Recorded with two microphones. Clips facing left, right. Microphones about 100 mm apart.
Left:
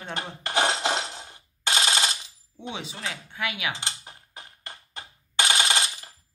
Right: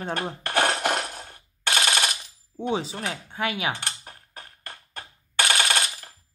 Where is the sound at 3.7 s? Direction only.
50° right (ahead or behind).